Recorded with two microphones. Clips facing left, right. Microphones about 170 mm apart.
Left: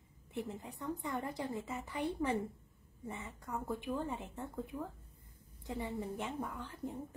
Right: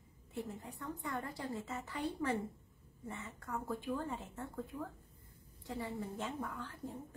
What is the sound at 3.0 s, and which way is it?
A woman's voice, 20° left (ahead or behind).